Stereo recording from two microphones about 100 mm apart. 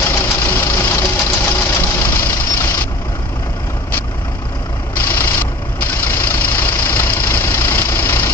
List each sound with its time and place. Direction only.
0.0 s engine: 25° left (ahead or behind)
4.9 s vehicle: 20° left (ahead or behind)